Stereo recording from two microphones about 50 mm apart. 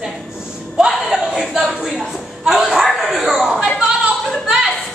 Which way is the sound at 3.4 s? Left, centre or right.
Centre.